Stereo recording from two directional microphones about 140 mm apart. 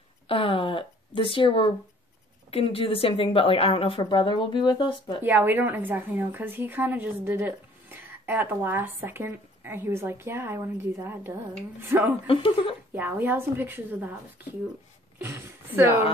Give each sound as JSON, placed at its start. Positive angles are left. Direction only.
{"t": 0.3, "sound": "a woman's voice", "side_deg": 40}
{"t": 5.2, "sound": "a woman's voice", "side_deg": -15}
{"t": 12.3, "sound": "a woman's voice", "side_deg": 40}
{"t": 12.9, "sound": "a woman's voice", "side_deg": -15}